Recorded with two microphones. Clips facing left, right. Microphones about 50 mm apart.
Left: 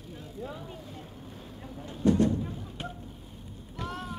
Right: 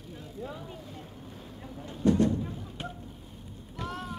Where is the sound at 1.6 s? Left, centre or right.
Centre.